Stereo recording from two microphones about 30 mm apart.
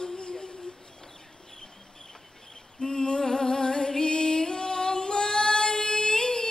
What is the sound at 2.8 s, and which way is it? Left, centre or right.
Music, left.